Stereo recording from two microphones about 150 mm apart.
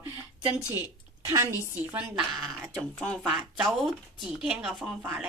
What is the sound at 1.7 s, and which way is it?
Speech, 10° right (ahead or behind).